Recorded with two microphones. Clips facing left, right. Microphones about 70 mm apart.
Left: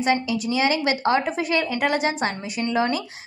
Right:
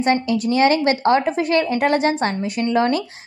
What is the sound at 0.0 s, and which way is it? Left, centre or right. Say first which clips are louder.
A woman's voice: right 4 dB; right.